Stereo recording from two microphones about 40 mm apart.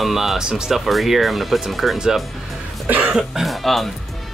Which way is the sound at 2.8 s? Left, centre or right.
Right.